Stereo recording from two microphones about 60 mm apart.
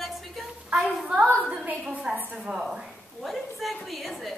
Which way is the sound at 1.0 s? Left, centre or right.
Centre.